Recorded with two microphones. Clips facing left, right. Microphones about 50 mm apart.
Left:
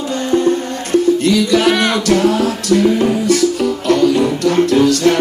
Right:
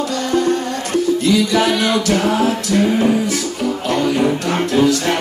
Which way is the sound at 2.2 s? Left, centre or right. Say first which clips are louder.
Left 2 dB; right.